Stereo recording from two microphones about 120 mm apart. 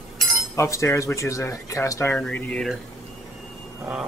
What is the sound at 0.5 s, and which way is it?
Speech, 25° left (ahead or behind).